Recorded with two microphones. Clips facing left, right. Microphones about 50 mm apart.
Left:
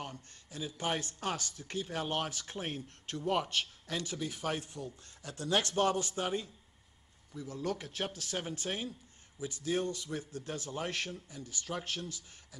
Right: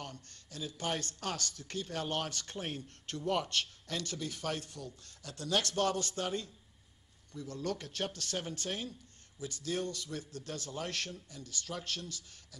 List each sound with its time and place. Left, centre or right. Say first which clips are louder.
0.0 s speech: left 2 dB; centre